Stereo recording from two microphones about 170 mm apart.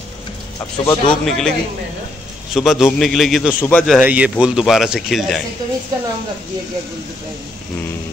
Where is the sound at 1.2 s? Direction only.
5° left (ahead or behind).